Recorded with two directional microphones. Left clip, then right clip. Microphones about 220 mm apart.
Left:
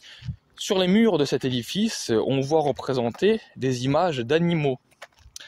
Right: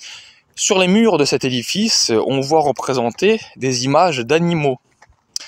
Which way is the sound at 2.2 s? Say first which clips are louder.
Right 7 dB; 20° right (ahead or behind).